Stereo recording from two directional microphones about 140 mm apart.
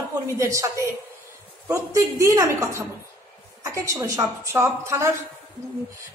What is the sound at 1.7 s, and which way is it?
A man's voice, 20° right (ahead or behind).